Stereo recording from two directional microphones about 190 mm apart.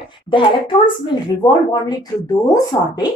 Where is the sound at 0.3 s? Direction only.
25° left (ahead or behind).